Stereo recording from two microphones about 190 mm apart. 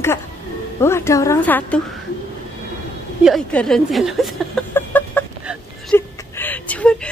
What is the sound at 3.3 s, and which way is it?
A woman's voice, 5° left (ahead or behind).